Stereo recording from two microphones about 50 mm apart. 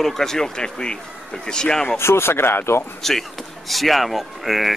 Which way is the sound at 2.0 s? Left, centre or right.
Left.